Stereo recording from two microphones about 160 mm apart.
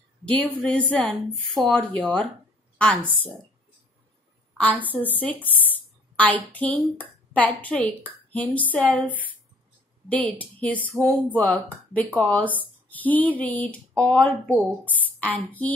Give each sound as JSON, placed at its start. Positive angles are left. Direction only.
{"t": 0.2, "sound": "a woman's voice", "side_deg": 5}
{"t": 5.0, "sound": "a woman's voice", "side_deg": 10}